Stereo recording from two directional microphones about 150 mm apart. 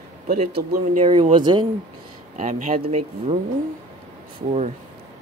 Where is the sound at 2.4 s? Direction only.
60° right (ahead or behind).